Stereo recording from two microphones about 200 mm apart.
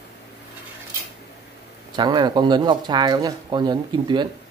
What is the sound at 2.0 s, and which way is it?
Speech, 20° right (ahead or behind).